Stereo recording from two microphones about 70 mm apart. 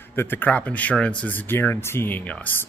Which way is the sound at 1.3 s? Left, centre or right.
Left.